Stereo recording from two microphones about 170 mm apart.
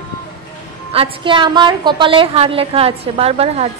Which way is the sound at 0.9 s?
30° right (ahead or behind).